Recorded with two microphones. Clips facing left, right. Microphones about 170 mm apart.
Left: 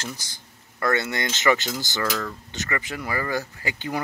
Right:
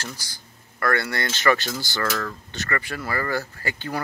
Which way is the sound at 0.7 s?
20° left (ahead or behind).